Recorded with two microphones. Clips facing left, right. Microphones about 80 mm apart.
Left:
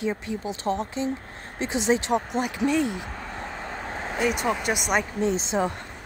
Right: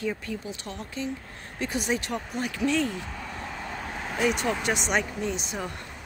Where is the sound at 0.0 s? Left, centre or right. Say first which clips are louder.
Left 3 dB; left.